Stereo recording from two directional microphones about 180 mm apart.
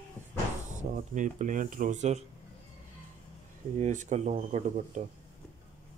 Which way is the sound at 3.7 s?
40° right (ahead or behind).